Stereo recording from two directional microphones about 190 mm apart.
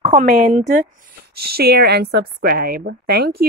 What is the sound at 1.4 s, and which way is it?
A woman's voice, 55° right (ahead or behind).